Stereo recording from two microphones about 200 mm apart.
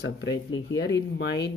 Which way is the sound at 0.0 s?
60° left (ahead or behind).